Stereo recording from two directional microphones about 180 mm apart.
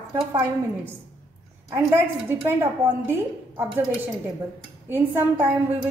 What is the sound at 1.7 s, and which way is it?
Speech, 15° right (ahead or behind).